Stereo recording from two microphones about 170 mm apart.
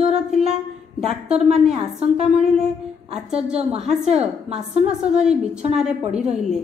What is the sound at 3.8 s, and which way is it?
Speech, 5° right (ahead or behind).